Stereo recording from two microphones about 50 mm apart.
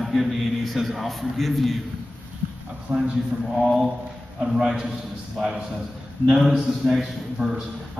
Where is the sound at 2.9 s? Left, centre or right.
Right.